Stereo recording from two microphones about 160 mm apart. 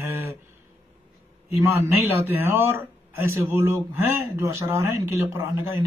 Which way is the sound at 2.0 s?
15° right (ahead or behind).